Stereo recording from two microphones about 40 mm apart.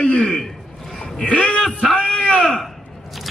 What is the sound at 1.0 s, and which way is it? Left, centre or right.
Vehicle, centre.